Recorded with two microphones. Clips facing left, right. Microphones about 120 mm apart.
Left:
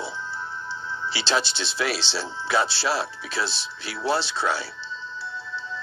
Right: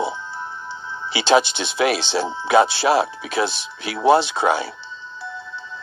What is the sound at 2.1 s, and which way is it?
Speech, 50° right (ahead or behind).